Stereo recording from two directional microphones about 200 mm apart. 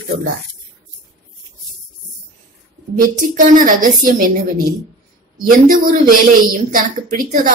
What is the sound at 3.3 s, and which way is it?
A woman's voice, 40° right (ahead or behind).